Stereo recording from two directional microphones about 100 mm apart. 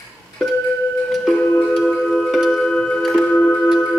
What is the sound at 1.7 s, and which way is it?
Music, 5° left (ahead or behind).